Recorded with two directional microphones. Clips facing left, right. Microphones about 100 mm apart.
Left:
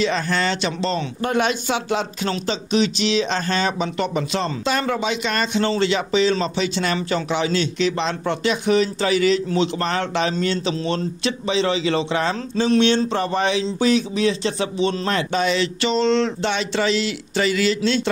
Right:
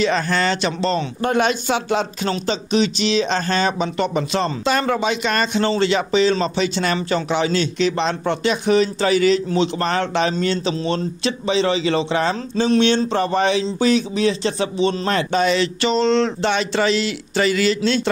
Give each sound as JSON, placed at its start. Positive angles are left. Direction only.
{"t": 0.0, "sound": "speech", "side_deg": -50}